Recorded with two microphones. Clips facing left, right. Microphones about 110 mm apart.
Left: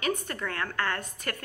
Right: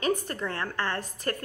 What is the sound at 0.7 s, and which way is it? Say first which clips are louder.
Speech: even; 30° right (ahead or behind).